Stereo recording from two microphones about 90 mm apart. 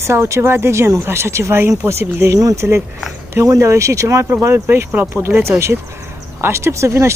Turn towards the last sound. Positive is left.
turn(degrees=-30)  # may be behind; listen again after turning